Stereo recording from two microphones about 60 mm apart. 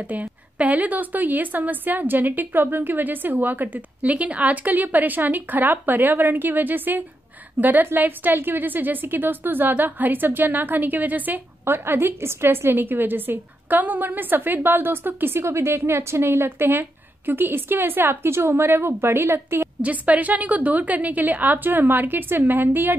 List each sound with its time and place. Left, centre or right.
0.0 s a woman's voice: right
15.4 s a woman's voice: right
19.8 s a woman's voice: right